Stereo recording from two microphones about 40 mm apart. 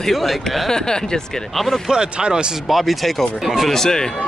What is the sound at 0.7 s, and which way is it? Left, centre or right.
Speech, centre.